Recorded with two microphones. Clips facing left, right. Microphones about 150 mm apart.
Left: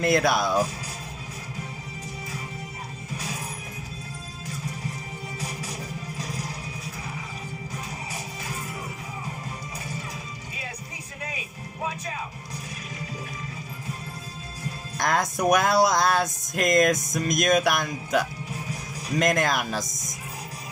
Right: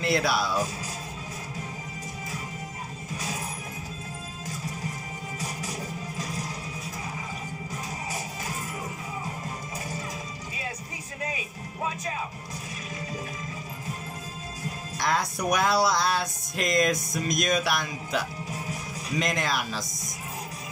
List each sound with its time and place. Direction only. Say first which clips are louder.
0.0 s speech: left 4 dB; 50° left (ahead or behind)
15.0 s speech: left 3 dB; 50° left (ahead or behind)